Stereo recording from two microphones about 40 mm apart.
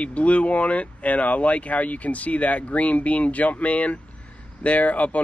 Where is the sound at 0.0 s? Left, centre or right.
Left.